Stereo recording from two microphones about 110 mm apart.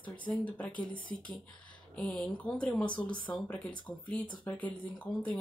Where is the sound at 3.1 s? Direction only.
45° left (ahead or behind).